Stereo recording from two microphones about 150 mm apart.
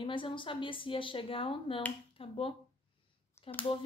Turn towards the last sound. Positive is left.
turn(degrees=20)  # may be behind; listen again after turning